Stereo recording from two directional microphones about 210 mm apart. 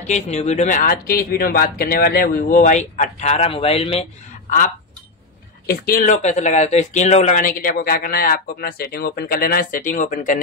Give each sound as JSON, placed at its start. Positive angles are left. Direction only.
{"t": 0.0, "sound": "speech", "side_deg": 35}
{"t": 5.7, "sound": "speech", "side_deg": 45}